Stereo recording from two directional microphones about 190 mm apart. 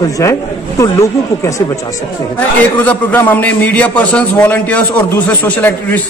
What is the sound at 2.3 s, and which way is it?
A man's voice, 10° left (ahead or behind).